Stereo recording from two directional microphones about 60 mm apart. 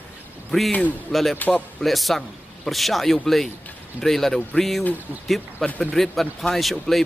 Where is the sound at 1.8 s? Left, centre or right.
Centre.